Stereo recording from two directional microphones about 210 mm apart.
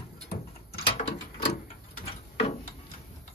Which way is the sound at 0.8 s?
30° left (ahead or behind).